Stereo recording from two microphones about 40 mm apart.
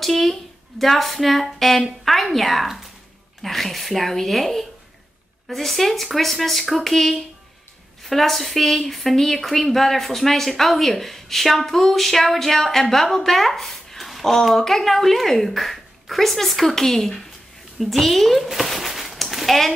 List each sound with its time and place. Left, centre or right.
0.0 s a woman's voice: centre